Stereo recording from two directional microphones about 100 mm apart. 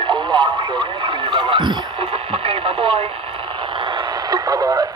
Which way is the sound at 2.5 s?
70° right (ahead or behind).